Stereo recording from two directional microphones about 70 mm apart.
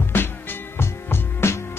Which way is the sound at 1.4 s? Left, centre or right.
Left.